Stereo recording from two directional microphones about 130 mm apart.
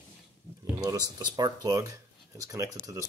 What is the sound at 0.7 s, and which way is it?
Speech, 30° right (ahead or behind).